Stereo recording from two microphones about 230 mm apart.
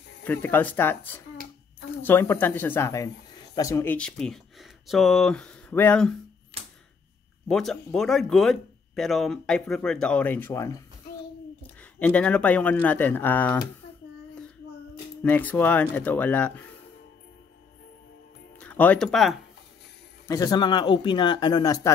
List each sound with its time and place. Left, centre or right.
0.2 s speech: centre
7.4 s speech: centre
15.2 s speech: centre
18.6 s speech: centre
20.2 s speech: centre